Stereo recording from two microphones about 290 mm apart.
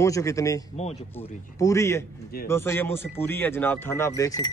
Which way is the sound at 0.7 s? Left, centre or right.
Left.